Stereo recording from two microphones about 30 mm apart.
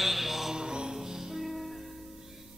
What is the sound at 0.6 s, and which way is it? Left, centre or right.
Music, right.